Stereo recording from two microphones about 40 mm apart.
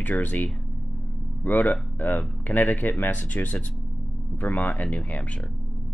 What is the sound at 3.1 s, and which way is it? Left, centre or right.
Speech, left.